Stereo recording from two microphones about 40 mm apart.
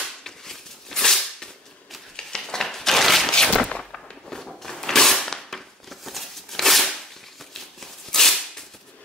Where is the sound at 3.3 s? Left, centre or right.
Centre.